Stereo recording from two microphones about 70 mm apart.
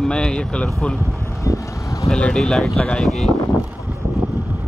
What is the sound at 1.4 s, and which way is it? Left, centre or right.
Vehicle, left.